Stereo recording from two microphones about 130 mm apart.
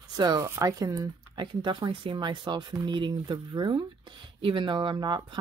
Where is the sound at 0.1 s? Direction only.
30° right (ahead or behind).